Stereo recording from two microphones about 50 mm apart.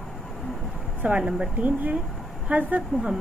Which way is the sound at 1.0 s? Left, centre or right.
Right.